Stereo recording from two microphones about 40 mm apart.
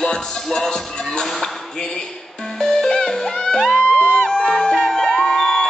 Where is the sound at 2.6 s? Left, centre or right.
Centre.